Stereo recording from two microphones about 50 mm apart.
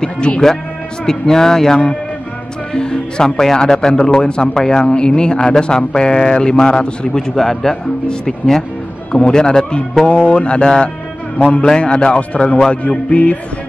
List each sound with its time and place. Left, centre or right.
0.0 s a man's voice: centre
11.3 s a man's voice: left
11.6 s a man's voice: centre